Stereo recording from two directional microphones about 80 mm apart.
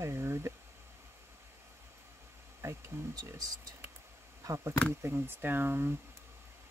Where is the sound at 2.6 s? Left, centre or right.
Right.